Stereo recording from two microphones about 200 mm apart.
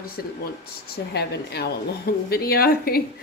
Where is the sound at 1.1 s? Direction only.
55° left (ahead or behind).